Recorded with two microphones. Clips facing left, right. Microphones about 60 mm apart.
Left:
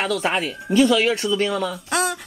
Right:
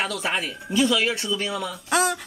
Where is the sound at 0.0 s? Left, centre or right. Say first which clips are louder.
Left 4 dB; left.